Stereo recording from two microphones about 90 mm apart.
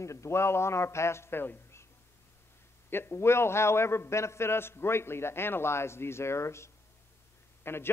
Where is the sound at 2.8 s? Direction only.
25° left (ahead or behind).